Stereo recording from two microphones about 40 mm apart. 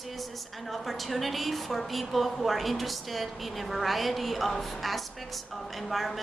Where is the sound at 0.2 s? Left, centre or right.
Centre.